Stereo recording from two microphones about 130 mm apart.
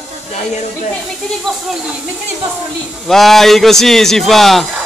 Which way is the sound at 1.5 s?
Centre (ahead or behind).